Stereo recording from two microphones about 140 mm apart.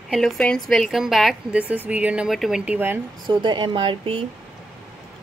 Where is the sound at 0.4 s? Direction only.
5° left (ahead or behind); by 3.0 s 15° right (ahead or behind).